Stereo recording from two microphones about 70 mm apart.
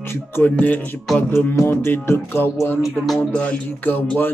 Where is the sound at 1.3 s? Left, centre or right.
Left.